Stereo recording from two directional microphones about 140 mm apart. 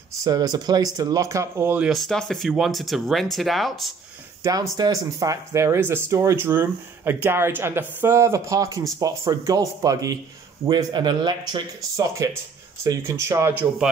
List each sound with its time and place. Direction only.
0.2 s speech: 25° right (ahead or behind)
1.9 s speech: centre (ahead or behind)
4.4 s speech: 25° right (ahead or behind)